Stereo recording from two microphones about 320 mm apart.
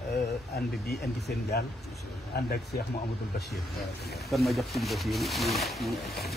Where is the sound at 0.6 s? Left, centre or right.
Left.